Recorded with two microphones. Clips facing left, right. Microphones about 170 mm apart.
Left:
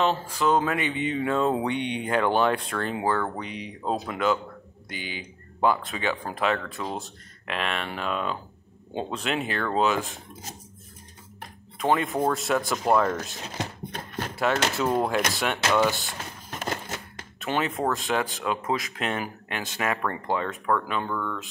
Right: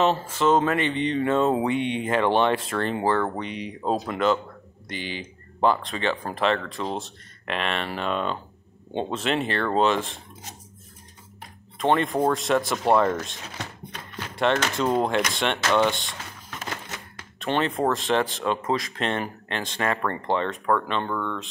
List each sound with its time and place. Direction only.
0.0 s speech: centre (ahead or behind)
11.8 s speech: 5° left (ahead or behind)
13.9 s a sound: 50° left (ahead or behind)
14.3 s gunshot: 5° left (ahead or behind)
14.7 s speech: 5° left (ahead or behind)
16.4 s printer: 45° left (ahead or behind)
17.4 s speech: 5° left (ahead or behind)